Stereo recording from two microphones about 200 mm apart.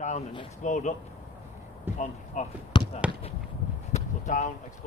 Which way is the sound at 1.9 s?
10° right (ahead or behind).